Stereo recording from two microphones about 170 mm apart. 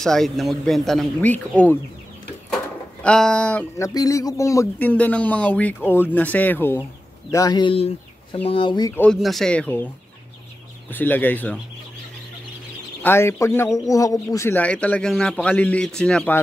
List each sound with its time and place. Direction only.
0.0 s speech: centre (ahead or behind)
3.0 s speech: 5° left (ahead or behind)
3.7 s speech: 20° left (ahead or behind)
8.9 s speech: 5° left (ahead or behind)
10.9 s speech: 10° left (ahead or behind)
13.0 s speech: 15° left (ahead or behind)